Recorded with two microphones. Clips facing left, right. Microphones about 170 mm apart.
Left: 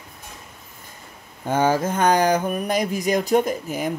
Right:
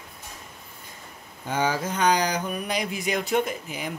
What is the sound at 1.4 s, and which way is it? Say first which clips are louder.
Speech: left 6 dB; 50° left (ahead or behind).